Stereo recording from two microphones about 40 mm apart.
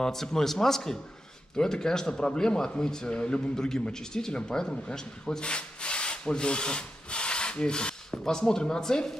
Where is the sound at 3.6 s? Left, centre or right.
Centre.